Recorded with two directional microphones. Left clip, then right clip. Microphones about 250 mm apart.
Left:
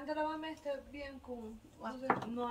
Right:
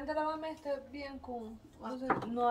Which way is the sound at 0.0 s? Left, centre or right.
Right.